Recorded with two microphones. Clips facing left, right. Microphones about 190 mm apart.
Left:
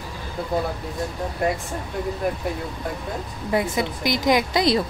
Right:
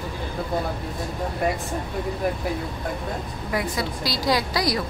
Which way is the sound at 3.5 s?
20° left (ahead or behind).